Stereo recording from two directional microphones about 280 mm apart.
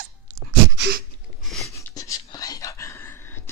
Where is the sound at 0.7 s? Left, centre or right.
Right.